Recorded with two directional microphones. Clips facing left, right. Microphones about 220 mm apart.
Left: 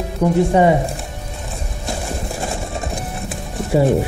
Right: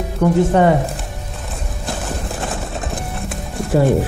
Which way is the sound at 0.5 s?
10° left (ahead or behind).